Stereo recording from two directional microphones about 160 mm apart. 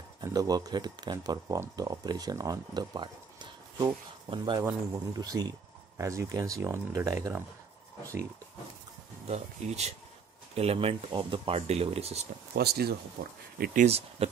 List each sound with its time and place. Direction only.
0.2 s speech: 25° right (ahead or behind)
9.3 s speech: 45° right (ahead or behind)
12.5 s speech: 80° right
13.8 s speech: 40° right (ahead or behind)